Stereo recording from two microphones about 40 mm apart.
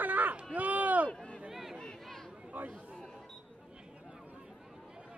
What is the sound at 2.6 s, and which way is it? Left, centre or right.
Chatter, right.